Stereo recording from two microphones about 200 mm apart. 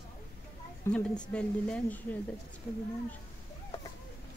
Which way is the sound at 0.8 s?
5° left (ahead or behind).